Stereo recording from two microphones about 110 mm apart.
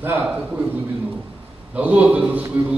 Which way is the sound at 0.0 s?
20° right (ahead or behind).